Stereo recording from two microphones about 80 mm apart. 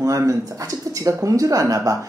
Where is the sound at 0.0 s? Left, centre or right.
Right.